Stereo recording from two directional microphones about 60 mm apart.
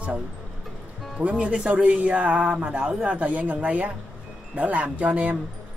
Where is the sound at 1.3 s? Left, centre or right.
Centre.